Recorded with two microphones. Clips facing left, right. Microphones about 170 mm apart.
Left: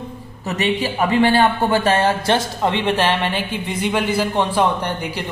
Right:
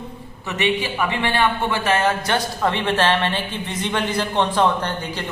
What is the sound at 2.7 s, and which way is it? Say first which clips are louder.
A woman's voice: left 1 dB; 15° left (ahead or behind).